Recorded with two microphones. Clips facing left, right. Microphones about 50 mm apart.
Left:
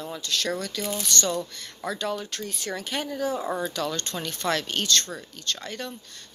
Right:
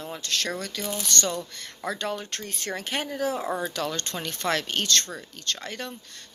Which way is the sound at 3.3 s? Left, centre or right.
Centre.